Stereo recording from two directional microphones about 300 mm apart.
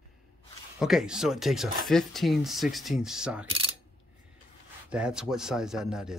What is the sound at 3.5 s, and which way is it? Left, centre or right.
Mechanisms, centre.